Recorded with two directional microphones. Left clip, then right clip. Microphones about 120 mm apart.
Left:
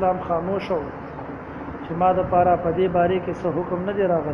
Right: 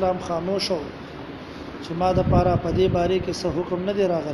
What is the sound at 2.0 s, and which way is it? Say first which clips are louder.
Speech: left 3 dB; 65° right (ahead or behind).